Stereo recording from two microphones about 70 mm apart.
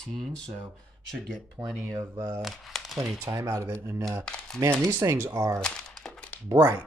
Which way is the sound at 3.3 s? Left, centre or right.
Right.